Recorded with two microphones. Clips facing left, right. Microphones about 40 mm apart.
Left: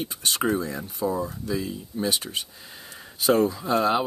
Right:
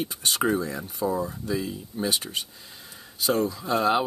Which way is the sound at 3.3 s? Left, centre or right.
Centre.